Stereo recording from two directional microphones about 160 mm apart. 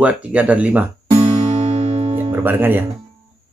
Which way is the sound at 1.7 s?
40° right (ahead or behind).